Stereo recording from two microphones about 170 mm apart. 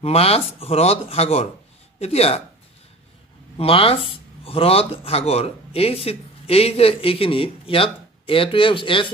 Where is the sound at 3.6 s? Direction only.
35° left (ahead or behind).